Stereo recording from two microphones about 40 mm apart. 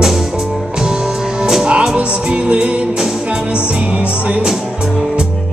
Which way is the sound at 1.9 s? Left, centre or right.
Right.